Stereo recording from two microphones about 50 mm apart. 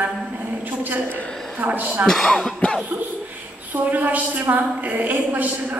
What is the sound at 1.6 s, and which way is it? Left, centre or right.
Speech, right.